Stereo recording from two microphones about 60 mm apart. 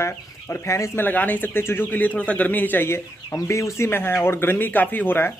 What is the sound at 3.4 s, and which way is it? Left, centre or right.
Speech, left.